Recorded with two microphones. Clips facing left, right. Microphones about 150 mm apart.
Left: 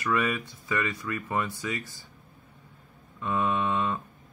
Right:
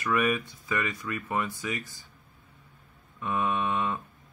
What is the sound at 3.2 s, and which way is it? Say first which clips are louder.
Speech: left 1 dB; 15° right (ahead or behind).